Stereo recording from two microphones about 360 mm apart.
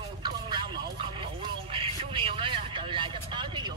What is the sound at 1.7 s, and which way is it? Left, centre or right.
Vehicle, centre.